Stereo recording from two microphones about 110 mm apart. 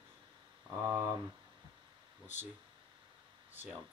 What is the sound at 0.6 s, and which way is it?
Speech, 20° right (ahead or behind).